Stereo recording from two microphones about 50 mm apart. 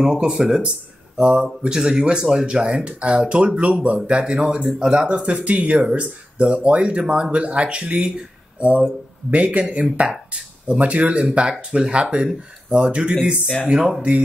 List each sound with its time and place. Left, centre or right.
0.2 s speech: centre
13.7 s speech: centre